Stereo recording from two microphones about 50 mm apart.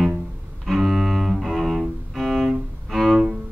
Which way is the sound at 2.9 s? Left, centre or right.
Centre.